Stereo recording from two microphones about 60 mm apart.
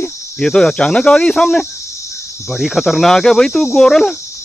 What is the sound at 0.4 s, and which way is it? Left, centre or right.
Speech, centre.